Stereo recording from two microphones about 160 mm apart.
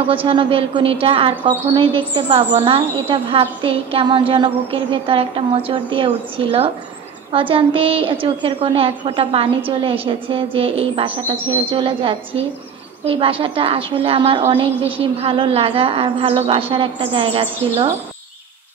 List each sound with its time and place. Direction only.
0.1 s a woman's voice: 35° right (ahead or behind)